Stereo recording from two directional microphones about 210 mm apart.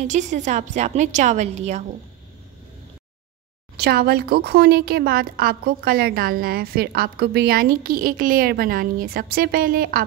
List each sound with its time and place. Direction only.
0.0 s a woman's voice: 35° right (ahead or behind)
3.7 s speech: 50° right (ahead or behind)